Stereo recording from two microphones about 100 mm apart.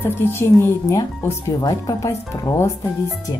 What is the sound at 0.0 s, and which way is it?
Speech, 20° left (ahead or behind).